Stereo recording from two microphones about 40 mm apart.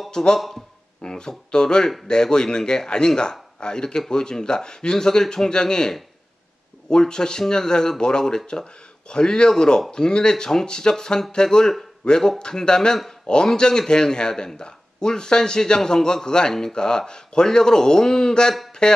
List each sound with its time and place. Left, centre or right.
0.1 s a man's voice: centre
12.4 s a man's voice: left